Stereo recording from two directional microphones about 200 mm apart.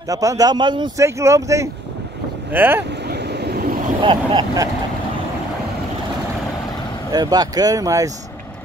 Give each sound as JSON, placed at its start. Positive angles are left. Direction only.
{"t": 0.1, "sound": "a man's voice", "side_deg": -15}
{"t": 3.1, "sound": "vehicle", "side_deg": -55}
{"t": 4.0, "sound": "speech", "side_deg": -25}
{"t": 7.1, "sound": "speech", "side_deg": -20}